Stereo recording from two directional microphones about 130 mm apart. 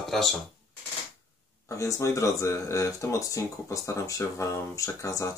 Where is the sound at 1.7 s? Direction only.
25° left (ahead or behind).